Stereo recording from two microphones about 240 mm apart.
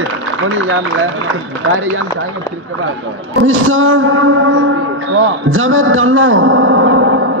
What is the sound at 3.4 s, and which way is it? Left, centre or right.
A man's voice, right.